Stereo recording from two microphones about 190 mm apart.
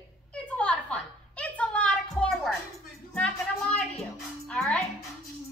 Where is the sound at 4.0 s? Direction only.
5° left (ahead or behind).